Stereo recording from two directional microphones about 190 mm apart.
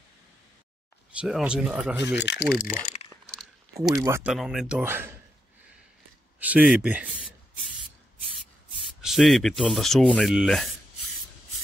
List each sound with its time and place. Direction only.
1.2 s speech: 5° right (ahead or behind)
2.1 s speech: 65° left (ahead or behind)
3.9 s speech: 15° right (ahead or behind)
4.3 s speech: centre (ahead or behind)
6.4 s speech: 10° right (ahead or behind)
8.8 s speech: centre (ahead or behind)